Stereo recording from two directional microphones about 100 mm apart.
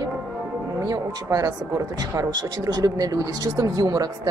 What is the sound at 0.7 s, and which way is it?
Speech, 35° right (ahead or behind).